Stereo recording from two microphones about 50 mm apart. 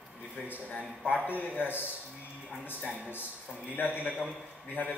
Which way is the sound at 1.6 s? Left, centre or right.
Left.